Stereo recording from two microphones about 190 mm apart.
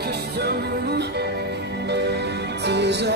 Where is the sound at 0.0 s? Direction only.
60° right (ahead or behind).